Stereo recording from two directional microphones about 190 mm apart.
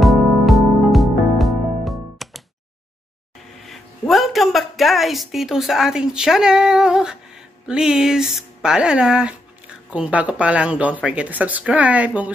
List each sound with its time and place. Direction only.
0.0 s music: centre (ahead or behind)
3.6 s speech: centre (ahead or behind)